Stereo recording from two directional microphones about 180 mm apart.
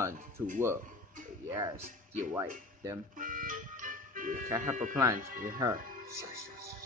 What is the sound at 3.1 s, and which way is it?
Music, 50° right (ahead or behind).